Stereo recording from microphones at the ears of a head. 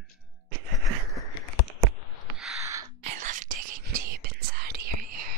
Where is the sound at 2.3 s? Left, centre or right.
Right.